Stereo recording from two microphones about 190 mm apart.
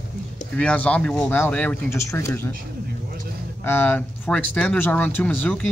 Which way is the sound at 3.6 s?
10° left (ahead or behind).